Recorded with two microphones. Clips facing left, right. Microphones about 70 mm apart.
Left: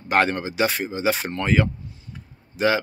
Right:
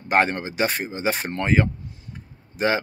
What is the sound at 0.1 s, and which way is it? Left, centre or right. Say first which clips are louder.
Speech: even; right.